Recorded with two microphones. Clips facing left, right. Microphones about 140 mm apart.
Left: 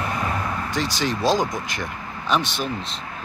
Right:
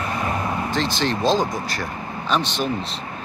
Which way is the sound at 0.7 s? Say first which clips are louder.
Right 1 dB; 10° left (ahead or behind).